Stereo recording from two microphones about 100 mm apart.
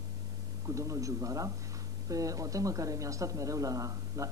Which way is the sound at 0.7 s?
35° right (ahead or behind).